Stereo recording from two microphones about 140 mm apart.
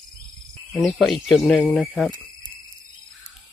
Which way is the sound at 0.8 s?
Centre (ahead or behind).